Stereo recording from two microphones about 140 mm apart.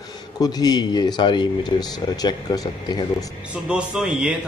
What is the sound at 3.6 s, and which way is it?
Speech, 5° right (ahead or behind).